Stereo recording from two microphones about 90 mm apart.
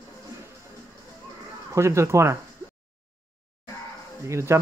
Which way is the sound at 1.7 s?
30° right (ahead or behind).